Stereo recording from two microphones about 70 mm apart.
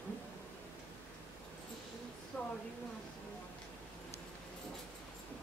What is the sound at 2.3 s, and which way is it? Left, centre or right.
Speech, left.